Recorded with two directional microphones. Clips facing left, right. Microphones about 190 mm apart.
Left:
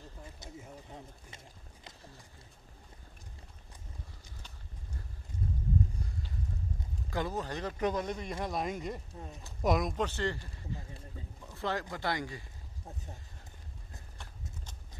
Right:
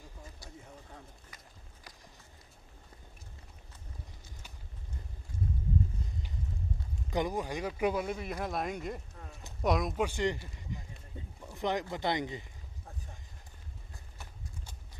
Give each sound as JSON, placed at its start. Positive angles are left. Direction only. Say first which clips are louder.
{"t": 0.4, "sound": "speech", "louder": "left 3 dB", "side_deg": 20}
{"t": 7.1, "sound": "speech", "louder": "right 3 dB", "side_deg": -15}
{"t": 14.1, "sound": "clip-clop", "louder": "even", "side_deg": -5}